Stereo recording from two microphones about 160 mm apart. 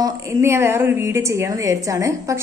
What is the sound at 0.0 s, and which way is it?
A woman's voice, 15° right (ahead or behind).